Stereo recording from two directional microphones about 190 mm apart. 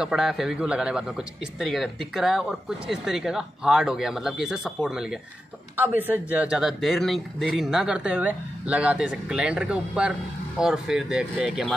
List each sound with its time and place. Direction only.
0.0 s speech: centre (ahead or behind)